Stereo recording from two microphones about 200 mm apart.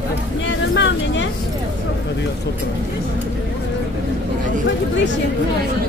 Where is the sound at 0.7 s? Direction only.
65° left (ahead or behind).